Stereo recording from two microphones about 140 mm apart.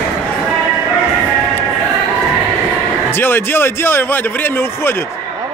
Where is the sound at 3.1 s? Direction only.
15° left (ahead or behind).